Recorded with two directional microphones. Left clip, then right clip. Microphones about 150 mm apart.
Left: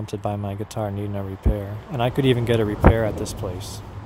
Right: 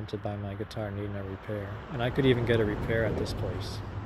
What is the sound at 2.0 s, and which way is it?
Speech, 40° left (ahead or behind).